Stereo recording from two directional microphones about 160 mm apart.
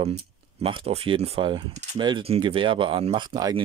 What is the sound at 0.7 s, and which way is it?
Speech, 35° right (ahead or behind).